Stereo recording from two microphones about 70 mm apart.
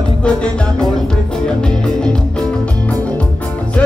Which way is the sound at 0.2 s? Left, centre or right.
Centre.